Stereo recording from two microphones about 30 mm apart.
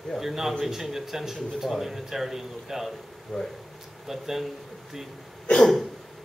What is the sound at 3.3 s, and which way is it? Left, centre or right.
Speech, left.